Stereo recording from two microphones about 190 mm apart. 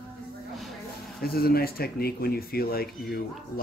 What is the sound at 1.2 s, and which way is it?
Speech, 55° left (ahead or behind).